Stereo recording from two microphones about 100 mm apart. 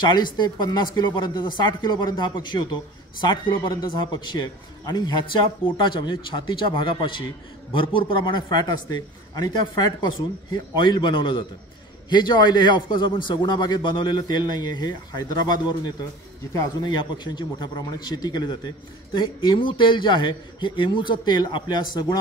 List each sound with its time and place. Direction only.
0.1 s a man's voice: 50° left (ahead or behind)
19.1 s a man's voice: 55° left (ahead or behind)